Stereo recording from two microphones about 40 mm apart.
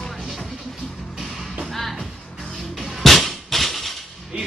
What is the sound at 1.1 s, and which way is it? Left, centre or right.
Music, centre.